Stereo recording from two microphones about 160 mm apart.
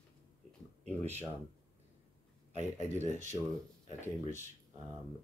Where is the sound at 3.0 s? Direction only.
50° right (ahead or behind).